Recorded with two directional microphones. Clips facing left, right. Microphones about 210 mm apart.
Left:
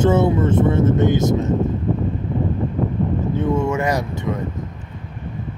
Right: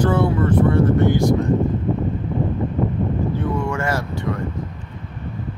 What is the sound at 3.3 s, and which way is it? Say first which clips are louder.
Vehicle: left 4 dB; 25° left (ahead or behind).